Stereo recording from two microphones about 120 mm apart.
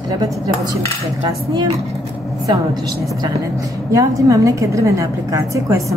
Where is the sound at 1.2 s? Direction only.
40° right (ahead or behind).